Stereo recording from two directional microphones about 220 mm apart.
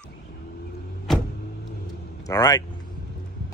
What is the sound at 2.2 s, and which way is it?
Speech, 15° left (ahead or behind).